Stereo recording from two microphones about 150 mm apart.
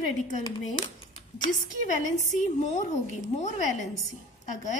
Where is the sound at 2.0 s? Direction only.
50° left (ahead or behind).